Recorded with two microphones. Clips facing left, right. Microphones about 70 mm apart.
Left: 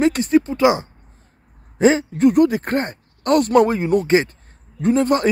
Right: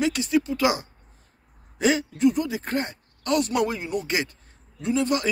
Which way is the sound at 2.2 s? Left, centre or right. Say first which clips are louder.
Left 8 dB; left.